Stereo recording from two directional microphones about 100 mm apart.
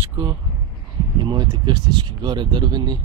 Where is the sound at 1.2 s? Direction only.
50° right (ahead or behind).